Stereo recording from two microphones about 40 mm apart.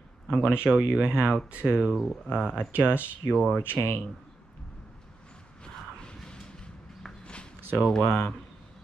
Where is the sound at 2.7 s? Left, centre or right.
Right.